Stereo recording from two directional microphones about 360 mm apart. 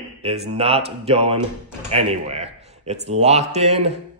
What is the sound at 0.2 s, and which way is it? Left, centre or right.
A man's voice, centre.